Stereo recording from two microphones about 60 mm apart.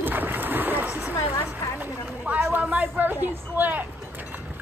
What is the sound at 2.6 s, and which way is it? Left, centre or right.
A woman's voice, right.